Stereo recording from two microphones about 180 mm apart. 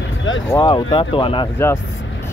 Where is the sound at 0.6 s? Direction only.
25° left (ahead or behind).